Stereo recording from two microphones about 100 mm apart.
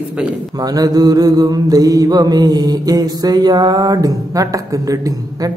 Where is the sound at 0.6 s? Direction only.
40° right (ahead or behind).